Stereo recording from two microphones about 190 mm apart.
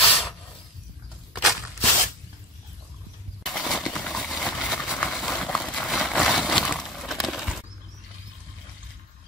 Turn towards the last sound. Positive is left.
turn(degrees=0)  # may be behind; listen again after turning